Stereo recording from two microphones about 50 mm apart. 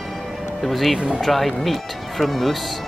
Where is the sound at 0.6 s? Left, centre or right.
Centre.